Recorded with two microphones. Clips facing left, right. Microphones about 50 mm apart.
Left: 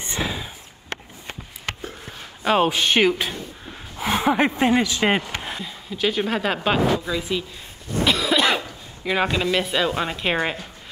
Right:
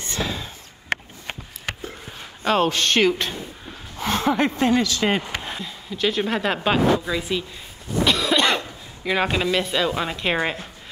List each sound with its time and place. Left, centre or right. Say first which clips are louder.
0.0 s a sound: even; centre
2.4 s speech: left 1 dB; centre
3.9 s a sound: left 1 dB; centre
4.6 s speech: left 1 dB; centre
5.4 s speech: even; centre
8.0 s cough: even; centre
9.5 s speech: even; centre